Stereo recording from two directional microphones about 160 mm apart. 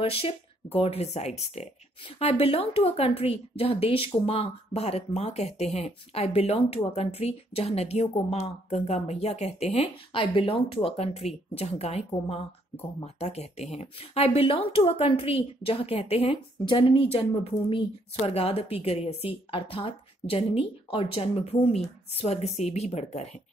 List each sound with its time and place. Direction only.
0.0 s speech: 35° left (ahead or behind)